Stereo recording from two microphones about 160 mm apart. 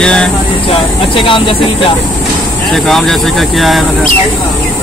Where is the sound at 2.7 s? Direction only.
Centre (ahead or behind).